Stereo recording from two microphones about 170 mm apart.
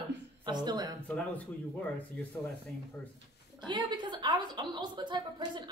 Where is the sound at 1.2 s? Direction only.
5° left (ahead or behind).